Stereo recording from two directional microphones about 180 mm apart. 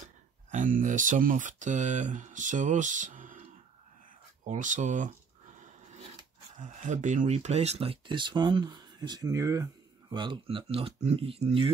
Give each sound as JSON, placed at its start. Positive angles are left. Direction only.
{"t": 0.5, "sound": "speech", "side_deg": -45}
{"t": 4.5, "sound": "speech", "side_deg": -45}
{"t": 5.6, "sound": "a sound", "side_deg": -45}
{"t": 6.6, "sound": "speech", "side_deg": -45}